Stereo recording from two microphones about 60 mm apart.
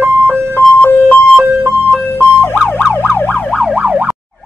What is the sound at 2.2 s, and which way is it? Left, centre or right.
Car alarm, left.